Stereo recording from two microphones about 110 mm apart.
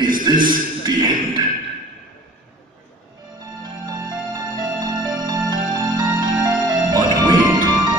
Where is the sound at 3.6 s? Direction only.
40° right (ahead or behind).